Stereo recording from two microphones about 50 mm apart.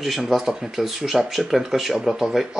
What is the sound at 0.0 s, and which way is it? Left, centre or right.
Speech, centre.